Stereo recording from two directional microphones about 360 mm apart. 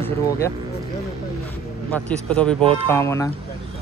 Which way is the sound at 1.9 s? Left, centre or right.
Centre.